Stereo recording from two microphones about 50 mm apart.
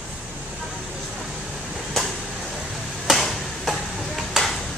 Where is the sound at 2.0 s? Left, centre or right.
Centre.